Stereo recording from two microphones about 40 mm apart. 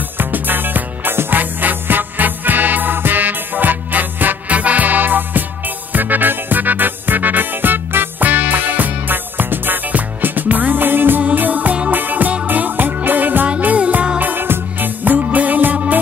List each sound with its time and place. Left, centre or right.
0.2 s music: right
4.5 s music: right
11.2 s music: right
14.2 s music: right
15.0 s music: right